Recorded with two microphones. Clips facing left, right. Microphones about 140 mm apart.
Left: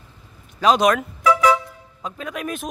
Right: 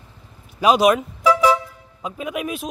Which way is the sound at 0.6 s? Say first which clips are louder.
Right 1 dB; 5° right (ahead or behind).